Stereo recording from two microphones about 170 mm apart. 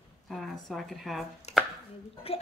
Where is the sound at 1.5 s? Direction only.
40° left (ahead or behind).